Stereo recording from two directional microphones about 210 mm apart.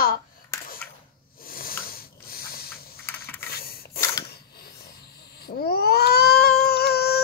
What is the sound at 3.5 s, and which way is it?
Rub, 45° left (ahead or behind).